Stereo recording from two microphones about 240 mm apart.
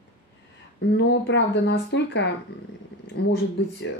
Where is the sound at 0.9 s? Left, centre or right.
Left.